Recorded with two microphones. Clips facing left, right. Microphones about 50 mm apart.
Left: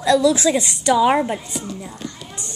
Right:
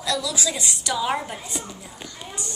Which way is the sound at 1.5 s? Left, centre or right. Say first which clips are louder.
Left 4 dB; centre.